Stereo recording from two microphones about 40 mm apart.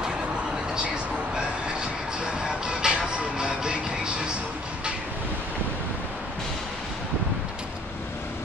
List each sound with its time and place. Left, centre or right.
2.2 s music: right